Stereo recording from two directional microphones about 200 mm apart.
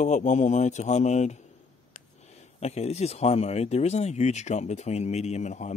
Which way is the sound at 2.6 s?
30° left (ahead or behind).